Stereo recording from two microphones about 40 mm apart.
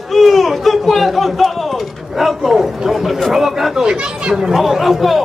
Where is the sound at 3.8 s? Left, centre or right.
Right.